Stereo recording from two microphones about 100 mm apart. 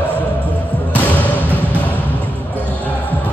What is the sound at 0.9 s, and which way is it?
Music, 15° left (ahead or behind).